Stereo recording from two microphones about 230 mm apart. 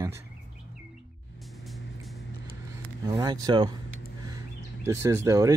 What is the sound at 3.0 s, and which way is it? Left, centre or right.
Speech, centre.